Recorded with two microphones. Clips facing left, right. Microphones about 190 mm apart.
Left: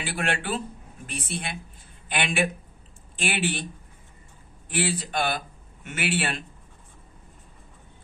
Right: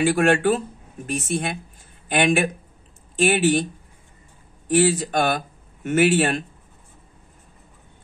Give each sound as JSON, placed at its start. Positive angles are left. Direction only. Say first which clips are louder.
{"t": 0.0, "sound": "speech", "louder": "right 12 dB", "side_deg": -45}
{"t": 4.6, "sound": "speech", "louder": "right 10 dB", "side_deg": -45}